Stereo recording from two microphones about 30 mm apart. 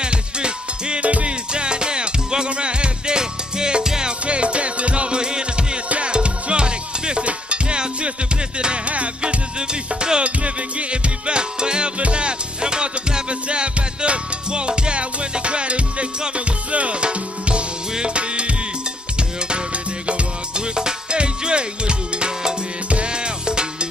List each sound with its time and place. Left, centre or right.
0.0 s music: right
1.0 s music: right
1.5 s music: right
4.3 s music: right
5.9 s music: right
9.6 s music: right
10.2 s music: right
20.1 s music: right